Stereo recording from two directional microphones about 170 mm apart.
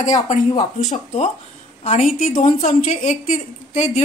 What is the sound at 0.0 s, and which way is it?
A woman's voice, 45° left (ahead or behind).